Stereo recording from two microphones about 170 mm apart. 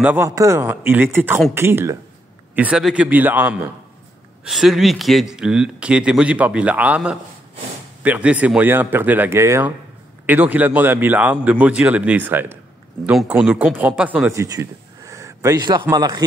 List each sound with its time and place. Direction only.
0.0 s a man's voice: 10° right (ahead or behind)